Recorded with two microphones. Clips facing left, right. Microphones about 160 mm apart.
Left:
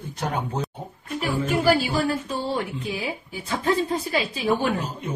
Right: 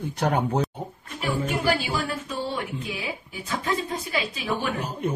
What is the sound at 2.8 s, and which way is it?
Speech, 35° left (ahead or behind).